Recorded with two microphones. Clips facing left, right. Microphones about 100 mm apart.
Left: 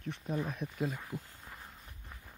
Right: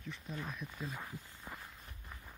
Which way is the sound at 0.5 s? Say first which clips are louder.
Left 7 dB; 55° left (ahead or behind).